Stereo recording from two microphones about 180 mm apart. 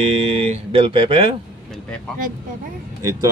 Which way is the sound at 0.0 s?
35° right (ahead or behind).